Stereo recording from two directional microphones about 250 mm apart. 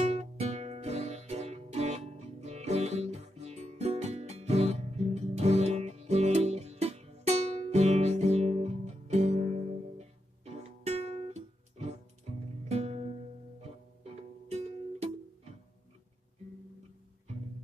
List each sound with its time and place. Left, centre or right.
0.0 s music: right